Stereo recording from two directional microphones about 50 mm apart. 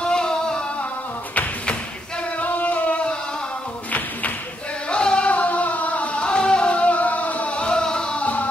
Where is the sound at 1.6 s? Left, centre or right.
Left.